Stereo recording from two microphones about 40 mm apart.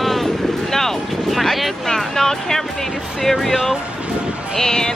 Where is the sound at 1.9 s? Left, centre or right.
Centre.